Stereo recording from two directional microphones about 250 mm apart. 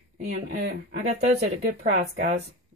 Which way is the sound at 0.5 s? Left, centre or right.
Right.